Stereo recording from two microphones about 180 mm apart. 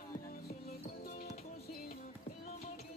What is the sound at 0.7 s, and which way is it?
Music, 55° left (ahead or behind).